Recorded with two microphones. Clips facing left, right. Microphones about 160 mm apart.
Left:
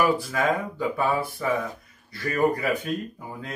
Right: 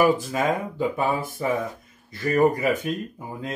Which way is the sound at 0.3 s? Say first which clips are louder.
Right 1 dB; 20° right (ahead or behind).